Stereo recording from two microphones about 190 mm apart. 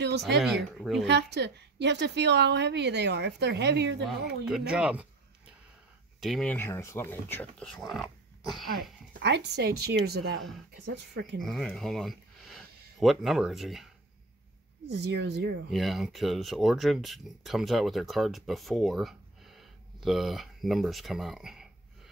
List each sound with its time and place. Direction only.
0.4 s speech: centre (ahead or behind)
1.0 s a woman's voice: 65° right (ahead or behind)
4.5 s speech: 5° right (ahead or behind)
6.2 s speech: 5° left (ahead or behind)
9.2 s a woman's voice: 60° right (ahead or behind)
11.4 s speech: centre (ahead or behind)
14.9 s a woman's voice: 60° right (ahead or behind)
15.7 s speech: centre (ahead or behind)